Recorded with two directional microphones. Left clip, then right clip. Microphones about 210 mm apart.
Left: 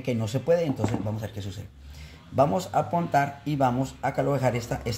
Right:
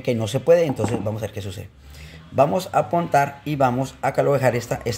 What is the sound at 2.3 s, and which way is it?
Speech, 10° right (ahead or behind).